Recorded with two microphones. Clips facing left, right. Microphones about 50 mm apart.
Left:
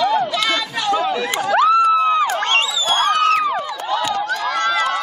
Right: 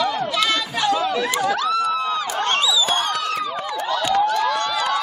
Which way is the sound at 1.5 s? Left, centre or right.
Left.